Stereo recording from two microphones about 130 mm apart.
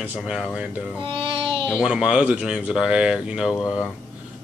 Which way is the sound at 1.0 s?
40° right (ahead or behind).